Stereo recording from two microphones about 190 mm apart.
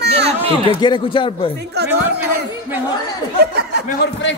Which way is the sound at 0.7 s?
25° left (ahead or behind).